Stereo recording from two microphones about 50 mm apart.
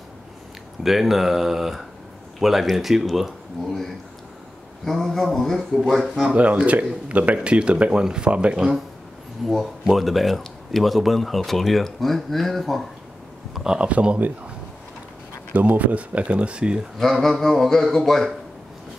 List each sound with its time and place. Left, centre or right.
0.8 s speech: centre
4.8 s speech: centre
6.3 s speech: right
8.5 s speech: centre
9.4 s speech: centre
13.7 s speech: right
15.5 s speech: right
17.0 s speech: centre